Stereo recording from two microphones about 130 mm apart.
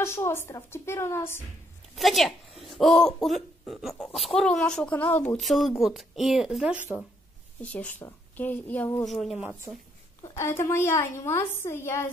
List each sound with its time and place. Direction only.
0.0 s a woman's voice: 20° left (ahead or behind)
2.0 s a child's voice: centre (ahead or behind)
5.4 s a child's voice: centre (ahead or behind)
7.6 s a woman's voice: 10° left (ahead or behind)
9.0 s a child's voice: centre (ahead or behind)
10.2 s a woman's voice: 20° left (ahead or behind)